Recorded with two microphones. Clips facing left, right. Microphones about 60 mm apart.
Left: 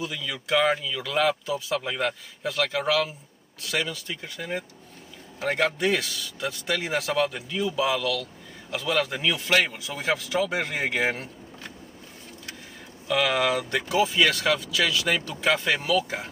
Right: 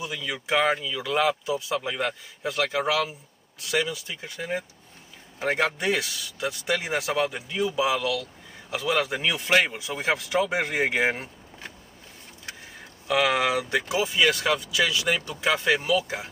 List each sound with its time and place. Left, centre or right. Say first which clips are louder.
0.0 s speech: even; centre
13.1 s speech: right 1 dB; centre